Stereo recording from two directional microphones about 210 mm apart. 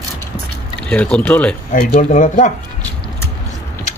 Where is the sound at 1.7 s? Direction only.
35° left (ahead or behind).